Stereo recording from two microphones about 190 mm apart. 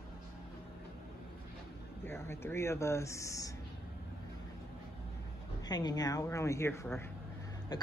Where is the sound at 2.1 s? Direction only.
10° left (ahead or behind).